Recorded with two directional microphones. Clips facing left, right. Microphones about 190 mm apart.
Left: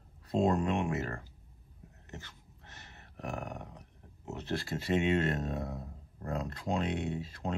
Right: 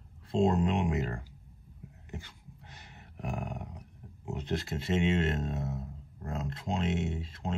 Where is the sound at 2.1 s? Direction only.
10° right (ahead or behind).